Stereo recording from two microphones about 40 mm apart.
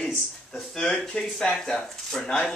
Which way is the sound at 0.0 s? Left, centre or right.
Left.